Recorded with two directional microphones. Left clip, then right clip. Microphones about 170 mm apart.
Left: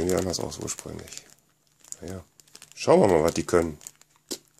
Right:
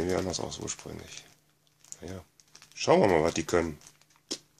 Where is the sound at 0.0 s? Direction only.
30° left (ahead or behind).